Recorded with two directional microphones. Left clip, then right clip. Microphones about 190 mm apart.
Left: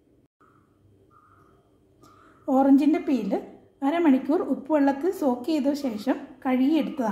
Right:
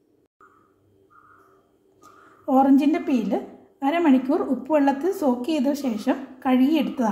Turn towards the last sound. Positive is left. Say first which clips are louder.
# right 2 dB
turn(degrees=0)  # may be behind; listen again after turning